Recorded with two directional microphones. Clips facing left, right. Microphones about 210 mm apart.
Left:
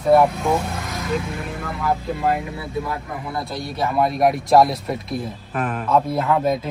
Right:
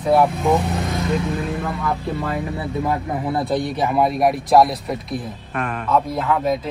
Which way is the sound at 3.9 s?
Centre (ahead or behind).